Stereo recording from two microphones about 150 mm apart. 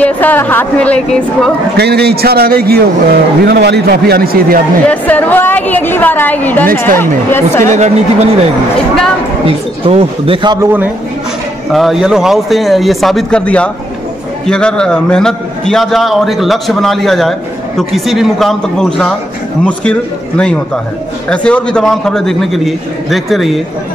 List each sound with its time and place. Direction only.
0.0 s a woman's voice: 10° left (ahead or behind)
1.8 s a man's voice: 90° right
4.8 s a woman's voice: 10° left (ahead or behind)
7.6 s speech: 50° right (ahead or behind)
9.8 s speech: 40° right (ahead or behind)
10.6 s a man's voice: 15° right (ahead or behind)
11.7 s a man's voice: centre (ahead or behind)